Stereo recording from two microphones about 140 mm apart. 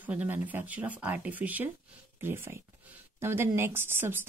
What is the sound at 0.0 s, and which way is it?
Speech, 10° right (ahead or behind).